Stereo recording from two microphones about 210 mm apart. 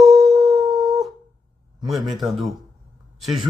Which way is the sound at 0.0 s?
Centre (ahead or behind).